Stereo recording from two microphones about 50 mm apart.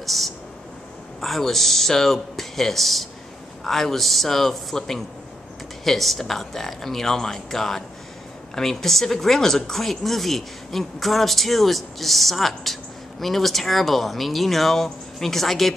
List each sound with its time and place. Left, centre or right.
0.0 s speech: centre